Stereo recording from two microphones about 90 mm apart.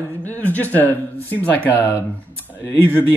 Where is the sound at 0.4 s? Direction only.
20° left (ahead or behind).